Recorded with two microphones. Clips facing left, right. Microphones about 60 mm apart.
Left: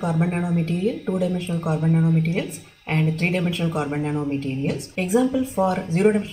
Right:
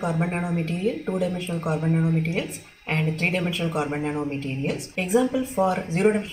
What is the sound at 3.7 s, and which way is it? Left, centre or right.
Speech, centre.